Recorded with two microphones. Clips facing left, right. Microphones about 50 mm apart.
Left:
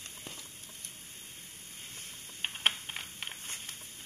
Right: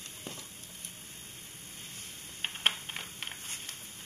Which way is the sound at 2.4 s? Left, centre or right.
Centre.